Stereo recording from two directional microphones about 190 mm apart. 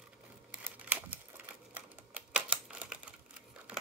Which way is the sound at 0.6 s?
10° right (ahead or behind).